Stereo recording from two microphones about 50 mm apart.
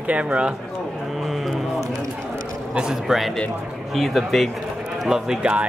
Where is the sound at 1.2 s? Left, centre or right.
Centre.